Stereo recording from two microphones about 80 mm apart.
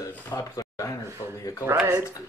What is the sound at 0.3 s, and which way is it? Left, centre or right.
Speech, left.